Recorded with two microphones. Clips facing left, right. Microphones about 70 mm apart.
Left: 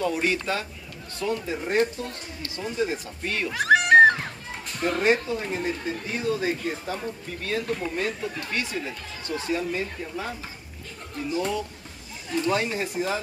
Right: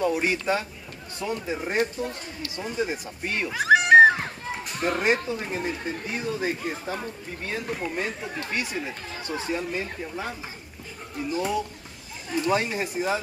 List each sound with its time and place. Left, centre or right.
0.0 s speech: centre
3.4 s cat: centre
4.7 s speech: centre
11.3 s speech: centre